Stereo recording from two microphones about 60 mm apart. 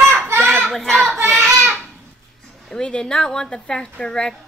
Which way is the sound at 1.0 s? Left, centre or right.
Right.